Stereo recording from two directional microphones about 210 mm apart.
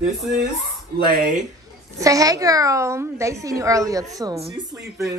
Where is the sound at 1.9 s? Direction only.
15° right (ahead or behind).